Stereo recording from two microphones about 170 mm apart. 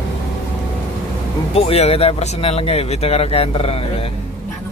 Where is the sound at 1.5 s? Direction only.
35° left (ahead or behind).